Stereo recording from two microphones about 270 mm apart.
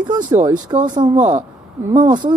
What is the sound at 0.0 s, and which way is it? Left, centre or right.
Speech, centre.